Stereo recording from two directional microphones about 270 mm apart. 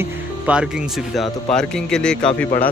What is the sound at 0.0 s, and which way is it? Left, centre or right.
Speech, centre.